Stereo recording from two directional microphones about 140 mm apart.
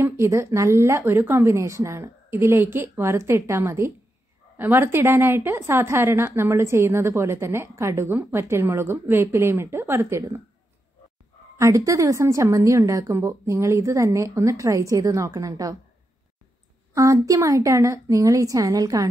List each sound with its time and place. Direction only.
0.0 s a woman's voice: 20° right (ahead or behind)
11.5 s a woman's voice: 20° right (ahead or behind)
16.9 s a woman's voice: 25° right (ahead or behind)